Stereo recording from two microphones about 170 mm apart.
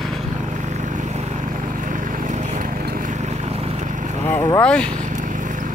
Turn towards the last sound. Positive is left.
turn(degrees=5)  # may be behind; listen again after turning